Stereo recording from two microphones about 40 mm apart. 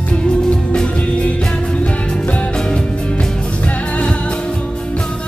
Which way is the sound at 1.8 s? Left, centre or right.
Left.